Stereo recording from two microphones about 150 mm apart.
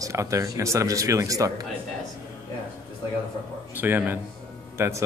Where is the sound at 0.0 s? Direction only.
20° right (ahead or behind).